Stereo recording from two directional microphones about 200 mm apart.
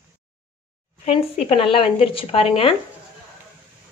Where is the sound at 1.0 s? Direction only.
25° left (ahead or behind).